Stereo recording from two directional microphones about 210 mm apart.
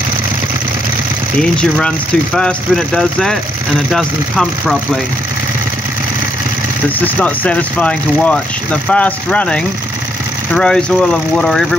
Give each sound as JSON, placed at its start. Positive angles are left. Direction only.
{"t": 1.4, "sound": "speech", "side_deg": 5}
{"t": 7.0, "sound": "speech", "side_deg": 5}